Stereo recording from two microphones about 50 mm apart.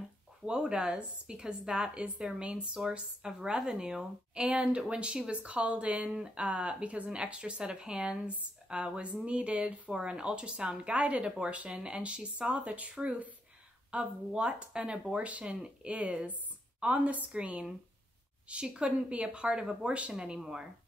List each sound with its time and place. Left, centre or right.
0.5 s a woman's voice: centre
13.9 s a woman's voice: centre